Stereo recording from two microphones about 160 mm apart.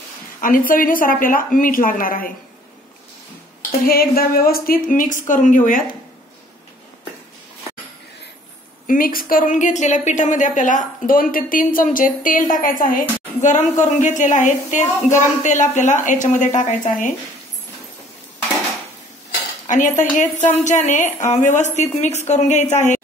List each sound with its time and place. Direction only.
0.4 s speech: 60° left (ahead or behind)
3.8 s speech: 70° left (ahead or behind)
8.8 s a woman's voice: 60° left (ahead or behind)
19.6 s a woman's voice: 50° left (ahead or behind)